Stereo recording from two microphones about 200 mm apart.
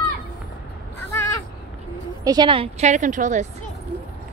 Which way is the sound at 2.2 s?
20° right (ahead or behind).